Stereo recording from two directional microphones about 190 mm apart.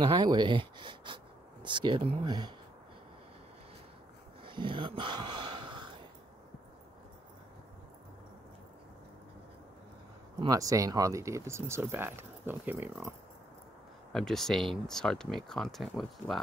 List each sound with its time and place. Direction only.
0.0 s speech: 20° right (ahead or behind)
4.5 s a sound: 25° right (ahead or behind)
10.4 s speech: 20° right (ahead or behind)
14.1 s speech: centre (ahead or behind)